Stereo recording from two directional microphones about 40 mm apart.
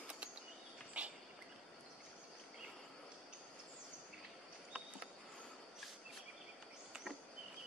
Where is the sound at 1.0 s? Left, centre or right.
Right.